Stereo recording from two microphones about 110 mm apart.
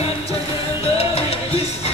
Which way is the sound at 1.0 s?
65° left (ahead or behind).